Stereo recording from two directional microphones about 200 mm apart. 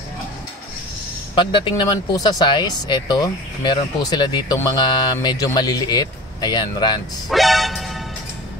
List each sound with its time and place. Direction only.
1.3 s speech: 25° left (ahead or behind)
7.2 s music: centre (ahead or behind)